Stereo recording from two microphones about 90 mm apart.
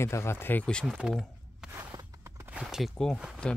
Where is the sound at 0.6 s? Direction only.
10° left (ahead or behind).